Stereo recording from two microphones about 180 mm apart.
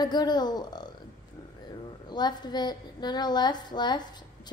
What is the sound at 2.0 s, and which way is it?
A woman's voice, 25° left (ahead or behind).